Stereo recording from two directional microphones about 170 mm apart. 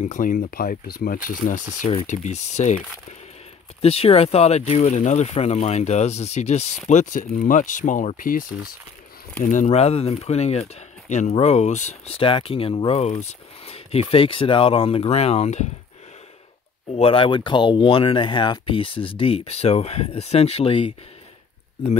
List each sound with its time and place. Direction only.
0.0 s speech: 50° left (ahead or behind)
16.9 s speech: 35° left (ahead or behind)